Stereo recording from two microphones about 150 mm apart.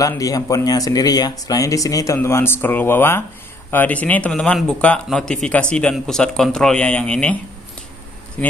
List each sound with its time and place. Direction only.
0.1 s speech: 25° left (ahead or behind); by 7.3 s 5° left (ahead or behind)
8.4 s speech: 10° left (ahead or behind)